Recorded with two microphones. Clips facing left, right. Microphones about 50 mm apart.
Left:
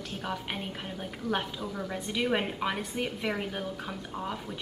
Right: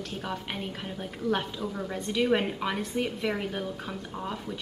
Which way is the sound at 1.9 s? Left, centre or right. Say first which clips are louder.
Right 4 dB; centre.